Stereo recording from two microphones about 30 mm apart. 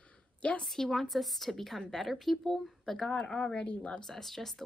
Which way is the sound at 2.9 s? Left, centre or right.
Left.